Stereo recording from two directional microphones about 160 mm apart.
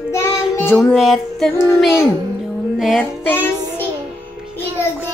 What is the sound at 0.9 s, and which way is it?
A child's voice, centre (ahead or behind).